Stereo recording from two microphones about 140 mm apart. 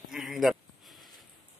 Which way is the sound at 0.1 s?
Centre (ahead or behind).